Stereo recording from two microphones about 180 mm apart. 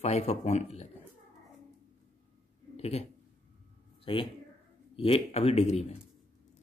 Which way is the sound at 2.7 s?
35° left (ahead or behind).